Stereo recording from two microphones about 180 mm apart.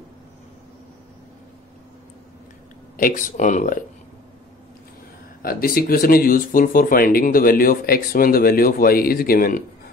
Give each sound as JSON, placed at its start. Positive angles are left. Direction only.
{"t": 3.0, "sound": "speech", "side_deg": 50}
{"t": 5.4, "sound": "speech", "side_deg": 55}